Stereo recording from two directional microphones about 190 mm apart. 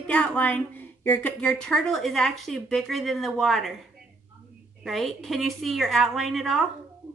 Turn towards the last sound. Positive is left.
turn(degrees=0)  # may be behind; listen again after turning